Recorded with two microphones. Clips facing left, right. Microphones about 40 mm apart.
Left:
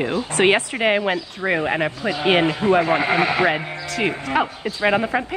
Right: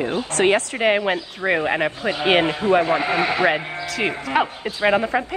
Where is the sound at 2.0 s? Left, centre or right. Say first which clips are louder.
Even; right.